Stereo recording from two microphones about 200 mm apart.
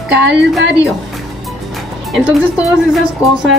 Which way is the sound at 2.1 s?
5° right (ahead or behind).